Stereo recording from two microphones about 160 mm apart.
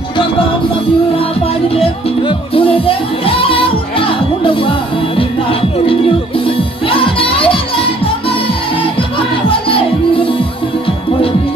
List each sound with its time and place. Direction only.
1.8 s music: 35° left (ahead or behind)
9.5 s music: 35° left (ahead or behind)